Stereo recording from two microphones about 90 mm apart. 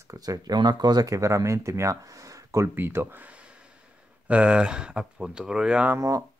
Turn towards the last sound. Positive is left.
turn(degrees=-40)  # may be behind; listen again after turning